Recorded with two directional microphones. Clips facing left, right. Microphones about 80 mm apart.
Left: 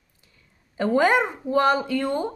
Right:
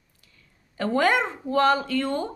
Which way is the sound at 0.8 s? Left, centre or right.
Centre.